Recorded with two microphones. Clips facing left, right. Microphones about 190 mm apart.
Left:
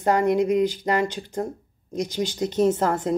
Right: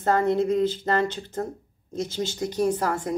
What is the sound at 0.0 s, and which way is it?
Speech, 15° left (ahead or behind).